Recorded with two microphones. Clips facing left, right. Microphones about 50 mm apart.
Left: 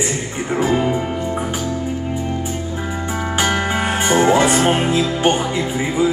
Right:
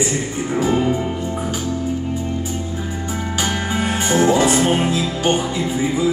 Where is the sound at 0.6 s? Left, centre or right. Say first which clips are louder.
Left 1 dB; left.